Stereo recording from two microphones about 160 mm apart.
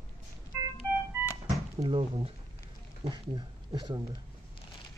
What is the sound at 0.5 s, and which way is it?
Music, 15° right (ahead or behind).